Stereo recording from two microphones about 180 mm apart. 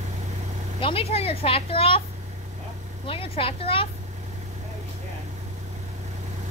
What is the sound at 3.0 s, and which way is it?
Speech, 30° left (ahead or behind).